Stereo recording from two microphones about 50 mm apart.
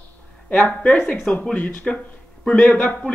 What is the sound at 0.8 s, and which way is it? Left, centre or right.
Speech, left.